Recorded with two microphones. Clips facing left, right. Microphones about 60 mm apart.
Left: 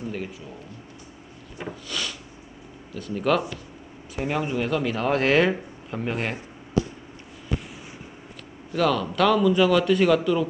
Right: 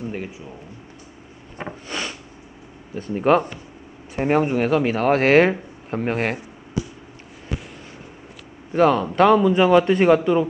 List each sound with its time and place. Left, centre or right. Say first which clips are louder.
0.1 s speech: right 2 dB; right
1.6 s a man's voice: right 3 dB; right
8.7 s a man's voice: right 6 dB; right